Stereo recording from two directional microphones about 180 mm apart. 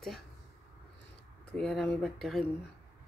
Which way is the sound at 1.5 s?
Centre (ahead or behind).